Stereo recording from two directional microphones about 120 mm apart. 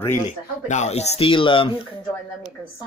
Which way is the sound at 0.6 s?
70° left (ahead or behind).